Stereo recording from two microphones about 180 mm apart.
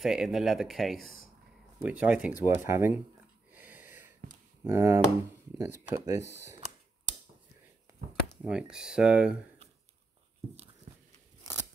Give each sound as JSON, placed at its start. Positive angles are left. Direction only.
{"t": 0.0, "sound": "speech", "side_deg": 0}
{"t": 3.5, "sound": "a sound", "side_deg": -10}
{"t": 4.6, "sound": "speech", "side_deg": -15}
{"t": 8.4, "sound": "speech", "side_deg": -5}